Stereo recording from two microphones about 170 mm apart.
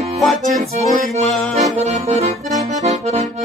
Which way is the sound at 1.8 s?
40° right (ahead or behind).